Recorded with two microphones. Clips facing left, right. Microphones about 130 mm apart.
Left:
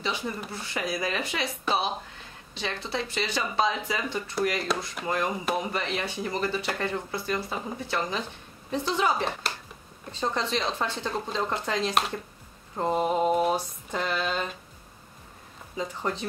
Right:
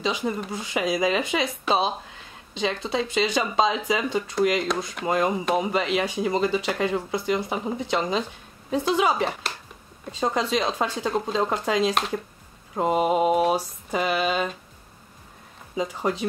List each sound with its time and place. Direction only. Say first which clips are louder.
0.0 s speech: right 5 dB; 15° right (ahead or behind)
15.7 s speech: right 5 dB; 10° right (ahead or behind)